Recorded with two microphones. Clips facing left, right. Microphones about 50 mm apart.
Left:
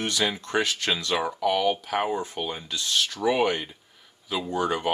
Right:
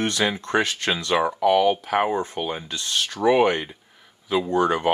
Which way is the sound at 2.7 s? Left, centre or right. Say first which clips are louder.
Even; right.